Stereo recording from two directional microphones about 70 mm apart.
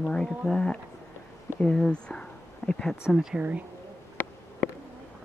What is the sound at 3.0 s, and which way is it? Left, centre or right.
Speech, centre.